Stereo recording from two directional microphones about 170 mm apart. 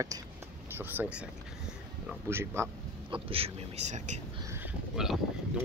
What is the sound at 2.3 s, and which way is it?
Speech, 15° right (ahead or behind).